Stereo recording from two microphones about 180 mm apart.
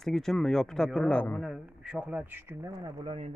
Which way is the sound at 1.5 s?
5° right (ahead or behind).